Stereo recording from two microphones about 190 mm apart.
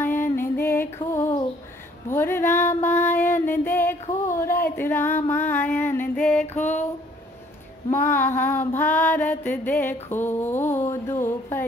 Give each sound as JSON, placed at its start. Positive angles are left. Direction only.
{"t": 0.0, "sound": "music", "side_deg": 10}
{"t": 2.0, "sound": "female singing", "side_deg": 10}
{"t": 4.4, "sound": "a sound", "side_deg": 10}
{"t": 5.3, "sound": "music", "side_deg": 10}
{"t": 7.9, "sound": "female singing", "side_deg": 10}